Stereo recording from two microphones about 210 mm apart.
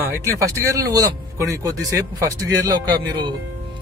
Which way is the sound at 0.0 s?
10° right (ahead or behind).